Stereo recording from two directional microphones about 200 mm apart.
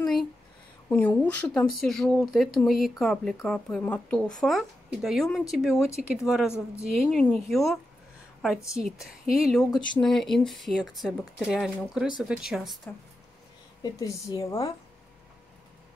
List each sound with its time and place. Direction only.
0.0 s a sound: centre (ahead or behind)
0.8 s speech: 10° left (ahead or behind)
13.8 s a woman's voice: 15° left (ahead or behind)